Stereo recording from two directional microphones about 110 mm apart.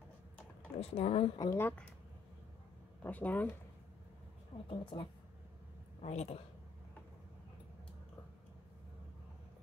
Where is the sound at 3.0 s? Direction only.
15° left (ahead or behind).